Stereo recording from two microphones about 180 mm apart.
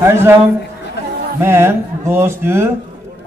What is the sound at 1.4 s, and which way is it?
A man's voice, 15° right (ahead or behind).